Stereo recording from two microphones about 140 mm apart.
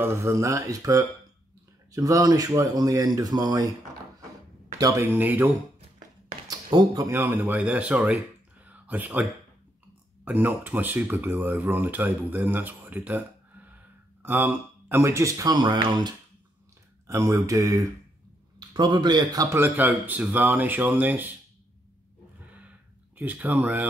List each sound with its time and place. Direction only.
0.0 s speech: 20° right (ahead or behind)
4.7 s speech: 20° right (ahead or behind)
6.4 s a sound: 30° right (ahead or behind)
7.1 s speech: 10° right (ahead or behind)
8.6 s a sound: 10° right (ahead or behind)
10.2 s speech: 10° right (ahead or behind)
14.2 s speech: 15° right (ahead or behind); by 16.2 s 35° right (ahead or behind)
17.1 s speech: 20° right (ahead or behind)
19.5 s speech: 15° right (ahead or behind)
23.1 s speech: 10° right (ahead or behind)